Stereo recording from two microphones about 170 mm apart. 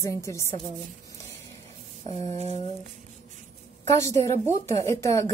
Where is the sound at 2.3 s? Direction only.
40° right (ahead or behind).